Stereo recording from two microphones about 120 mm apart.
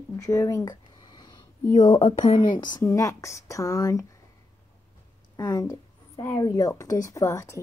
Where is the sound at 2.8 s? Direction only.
25° left (ahead or behind).